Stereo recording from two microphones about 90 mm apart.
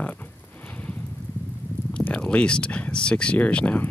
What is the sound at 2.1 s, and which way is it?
Speech, 10° left (ahead or behind).